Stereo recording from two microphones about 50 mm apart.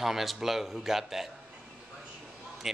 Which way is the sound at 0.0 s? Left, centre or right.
Centre.